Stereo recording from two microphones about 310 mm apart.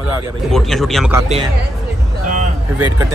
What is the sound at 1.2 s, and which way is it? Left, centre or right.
Speech, centre.